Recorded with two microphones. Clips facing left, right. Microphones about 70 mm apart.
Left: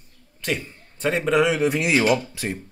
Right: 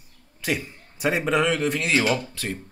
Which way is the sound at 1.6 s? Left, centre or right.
Centre.